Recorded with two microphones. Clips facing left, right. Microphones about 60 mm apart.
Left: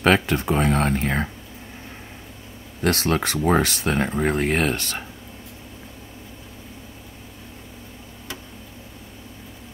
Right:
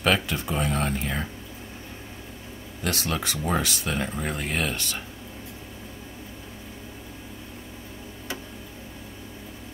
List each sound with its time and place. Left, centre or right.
0.0 s speech: left
2.8 s speech: left